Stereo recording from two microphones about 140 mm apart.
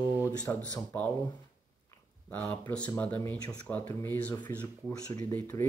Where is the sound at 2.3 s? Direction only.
10° left (ahead or behind).